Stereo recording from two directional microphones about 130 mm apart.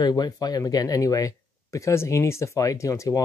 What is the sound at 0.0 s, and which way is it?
Speech, 30° left (ahead or behind).